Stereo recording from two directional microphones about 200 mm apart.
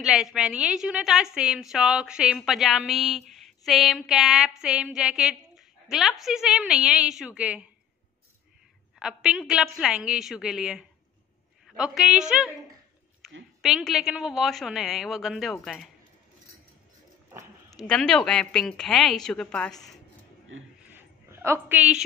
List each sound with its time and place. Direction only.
0.0 s a woman's voice: centre (ahead or behind)
9.0 s a woman's voice: 5° right (ahead or behind)
13.2 s a sound: 5° right (ahead or behind)
13.6 s a woman's voice: centre (ahead or behind)
17.6 s a woman's voice: 5° left (ahead or behind)
20.5 s speech: 75° right (ahead or behind)
20.9 s dog: 10° right (ahead or behind)